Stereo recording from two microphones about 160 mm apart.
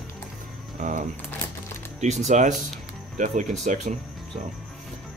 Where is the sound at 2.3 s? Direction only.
50° right (ahead or behind).